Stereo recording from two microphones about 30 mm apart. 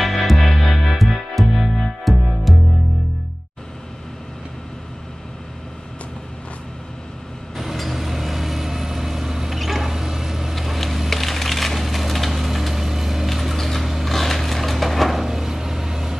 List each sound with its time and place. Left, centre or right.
0.0 s music: centre
7.5 s vehicle: centre
10.5 s wood: centre
13.3 s a sound: centre
15.2 s vehicle: centre